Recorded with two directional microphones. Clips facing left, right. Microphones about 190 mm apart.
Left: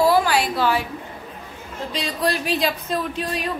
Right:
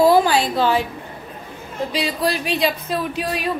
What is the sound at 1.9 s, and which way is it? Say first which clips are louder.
Speech: right 1 dB; 5° right (ahead or behind).